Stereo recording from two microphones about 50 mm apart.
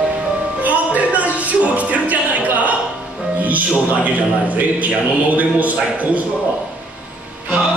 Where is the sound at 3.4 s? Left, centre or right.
Right.